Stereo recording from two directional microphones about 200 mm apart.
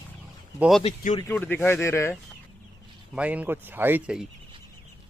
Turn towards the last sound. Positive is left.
turn(degrees=-5)  # may be behind; listen again after turning